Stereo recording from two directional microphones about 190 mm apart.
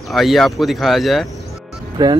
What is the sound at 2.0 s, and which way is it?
Speech, 20° right (ahead or behind).